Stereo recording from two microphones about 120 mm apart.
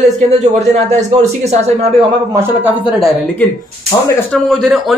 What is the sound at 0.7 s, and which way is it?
Speech, 65° right (ahead or behind).